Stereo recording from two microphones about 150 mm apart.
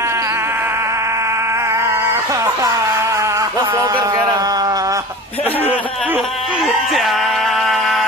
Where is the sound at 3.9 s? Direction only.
25° right (ahead or behind).